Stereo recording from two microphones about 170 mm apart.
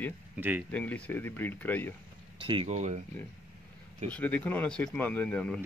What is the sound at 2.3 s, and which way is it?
Speech, 30° right (ahead or behind).